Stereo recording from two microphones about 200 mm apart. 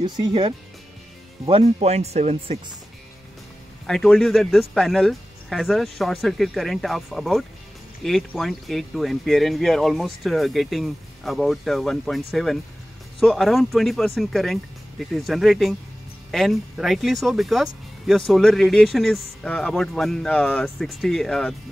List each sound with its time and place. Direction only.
0.0 s speech: 25° right (ahead or behind)
3.8 s speech: centre (ahead or behind)